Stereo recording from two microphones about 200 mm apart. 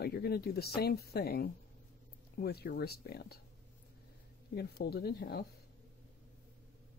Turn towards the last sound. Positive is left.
turn(degrees=50)  # may be behind; listen again after turning